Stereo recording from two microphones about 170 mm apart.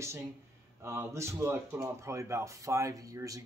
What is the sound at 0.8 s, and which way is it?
A man's voice, 15° right (ahead or behind).